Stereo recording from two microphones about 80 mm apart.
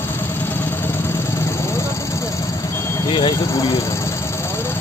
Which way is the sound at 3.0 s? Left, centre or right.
Left.